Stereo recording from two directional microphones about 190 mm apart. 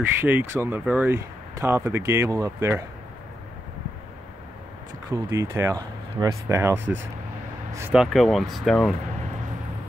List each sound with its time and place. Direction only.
0.2 s speech: 10° right (ahead or behind)
5.1 s speech: 15° right (ahead or behind)
7.9 s speech: centre (ahead or behind)